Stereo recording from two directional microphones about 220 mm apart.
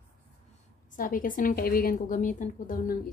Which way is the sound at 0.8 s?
35° left (ahead or behind).